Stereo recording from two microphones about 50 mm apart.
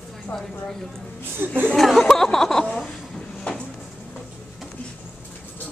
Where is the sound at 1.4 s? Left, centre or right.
Right.